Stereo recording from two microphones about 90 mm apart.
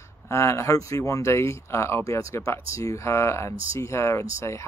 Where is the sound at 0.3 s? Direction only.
35° left (ahead or behind).